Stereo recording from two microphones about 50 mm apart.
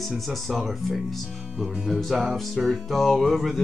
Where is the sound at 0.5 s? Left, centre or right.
Centre.